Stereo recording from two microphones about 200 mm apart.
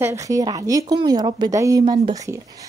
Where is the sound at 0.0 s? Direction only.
15° right (ahead or behind).